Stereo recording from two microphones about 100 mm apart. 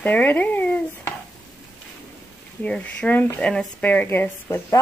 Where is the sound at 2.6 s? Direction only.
10° left (ahead or behind).